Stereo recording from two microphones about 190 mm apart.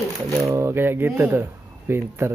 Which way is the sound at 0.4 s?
15° right (ahead or behind).